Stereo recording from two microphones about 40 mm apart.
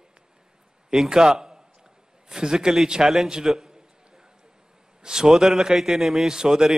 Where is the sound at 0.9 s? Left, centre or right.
Centre.